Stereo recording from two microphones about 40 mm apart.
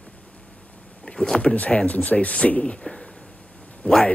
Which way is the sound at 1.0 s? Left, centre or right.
Left.